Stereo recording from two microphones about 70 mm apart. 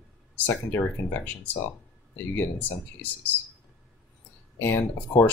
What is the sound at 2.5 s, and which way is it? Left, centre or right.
Speech, left.